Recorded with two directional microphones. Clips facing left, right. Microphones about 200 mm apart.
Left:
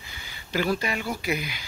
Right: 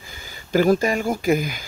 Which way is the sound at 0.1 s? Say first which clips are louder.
Right 9 dB; 45° right (ahead or behind).